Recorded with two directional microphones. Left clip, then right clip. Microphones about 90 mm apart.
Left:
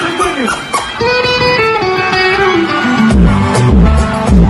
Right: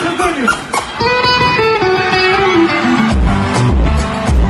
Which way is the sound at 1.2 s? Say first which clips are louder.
Even; 35° left (ahead or behind).